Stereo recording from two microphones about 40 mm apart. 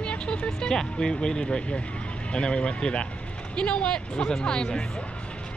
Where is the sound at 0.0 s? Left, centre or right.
Left.